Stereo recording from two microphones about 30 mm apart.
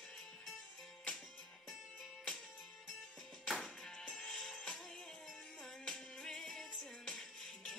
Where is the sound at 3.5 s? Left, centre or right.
Centre.